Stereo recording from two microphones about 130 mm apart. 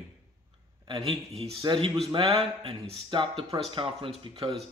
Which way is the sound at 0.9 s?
45° right (ahead or behind).